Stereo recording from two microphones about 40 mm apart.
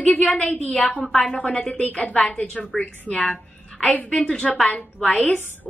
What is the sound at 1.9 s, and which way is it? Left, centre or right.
A woman's voice, left.